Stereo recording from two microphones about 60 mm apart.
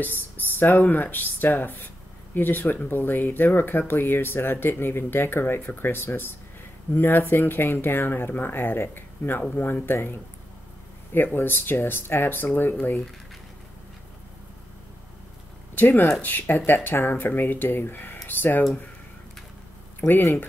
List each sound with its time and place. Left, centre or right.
0.0 s speech: left
11.3 s speech: left
15.7 s speech: left
20.1 s speech: left